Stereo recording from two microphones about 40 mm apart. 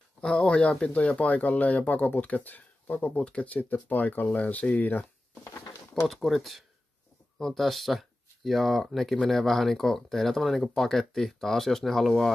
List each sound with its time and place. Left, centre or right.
0.2 s speech: left
3.2 s speech: left
3.4 s speech: left
6.0 s speech: centre